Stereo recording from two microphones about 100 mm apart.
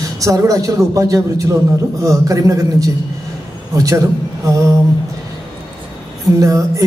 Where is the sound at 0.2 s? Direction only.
35° right (ahead or behind).